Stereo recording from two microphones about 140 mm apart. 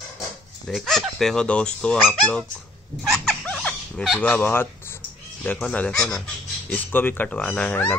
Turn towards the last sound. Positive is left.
turn(degrees=10)  # may be behind; listen again after turning